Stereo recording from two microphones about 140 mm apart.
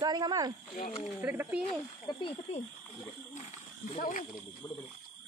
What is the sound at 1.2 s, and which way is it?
Speech, 10° right (ahead or behind).